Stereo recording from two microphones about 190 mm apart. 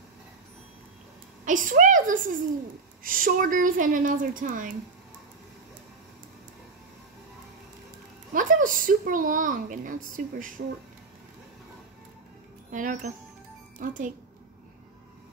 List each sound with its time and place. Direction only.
1.4 s a woman's voice: 45° right (ahead or behind)
8.3 s speech: 45° right (ahead or behind)
12.7 s a woman's voice: 45° right (ahead or behind)